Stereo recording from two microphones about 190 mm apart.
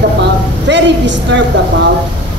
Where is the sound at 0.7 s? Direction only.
70° right (ahead or behind).